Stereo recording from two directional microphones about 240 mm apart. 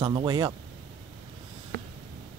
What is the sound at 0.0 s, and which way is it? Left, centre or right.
Speech, centre.